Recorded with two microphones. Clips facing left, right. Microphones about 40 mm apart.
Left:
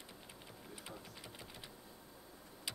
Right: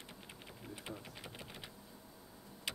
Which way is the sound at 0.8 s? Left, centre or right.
Centre.